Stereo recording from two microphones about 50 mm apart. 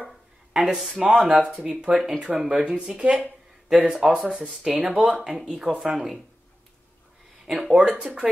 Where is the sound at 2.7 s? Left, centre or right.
Right.